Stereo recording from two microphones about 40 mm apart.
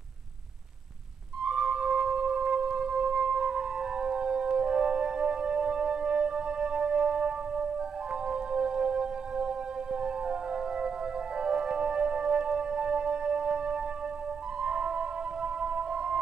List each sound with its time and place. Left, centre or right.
1.4 s music: centre